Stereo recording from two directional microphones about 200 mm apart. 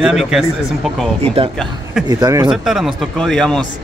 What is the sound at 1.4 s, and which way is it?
Speech, 30° right (ahead or behind).